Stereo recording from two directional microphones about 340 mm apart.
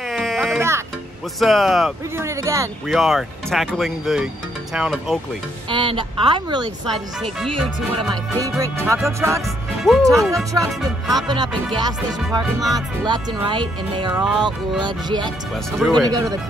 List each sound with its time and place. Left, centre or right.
0.1 s music: centre
1.4 s speech: centre
5.7 s music: centre
6.9 s speech: centre
7.9 s music: centre
11.2 s music: centre
15.5 s speech: centre
16.1 s music: centre